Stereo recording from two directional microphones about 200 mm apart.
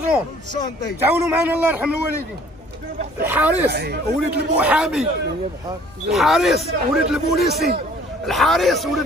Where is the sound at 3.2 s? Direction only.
10° right (ahead or behind).